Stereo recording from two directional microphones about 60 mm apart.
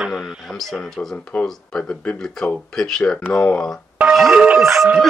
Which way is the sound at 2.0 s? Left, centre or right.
Centre.